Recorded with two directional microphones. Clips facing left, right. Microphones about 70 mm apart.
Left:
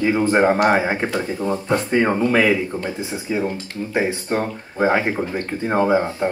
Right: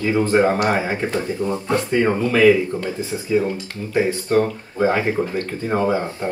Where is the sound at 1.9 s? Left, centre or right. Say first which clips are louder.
Left 1 dB; left.